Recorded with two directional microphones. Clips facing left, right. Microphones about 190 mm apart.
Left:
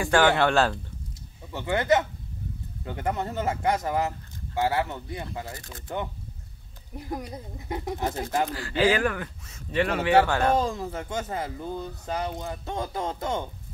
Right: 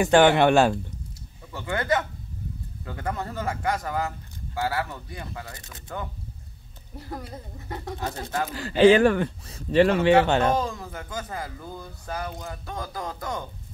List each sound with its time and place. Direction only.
0.0 s speech: 20° right (ahead or behind)
1.5 s speech: 20° left (ahead or behind)
8.5 s speech: 25° right (ahead or behind)
10.6 s speech: 25° left (ahead or behind)